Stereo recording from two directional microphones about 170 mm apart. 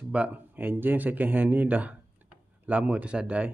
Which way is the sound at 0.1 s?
10° right (ahead or behind).